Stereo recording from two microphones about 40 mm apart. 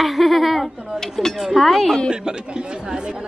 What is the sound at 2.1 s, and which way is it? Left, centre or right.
Speech, right.